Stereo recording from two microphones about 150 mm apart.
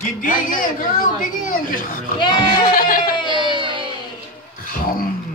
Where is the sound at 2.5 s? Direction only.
70° left (ahead or behind).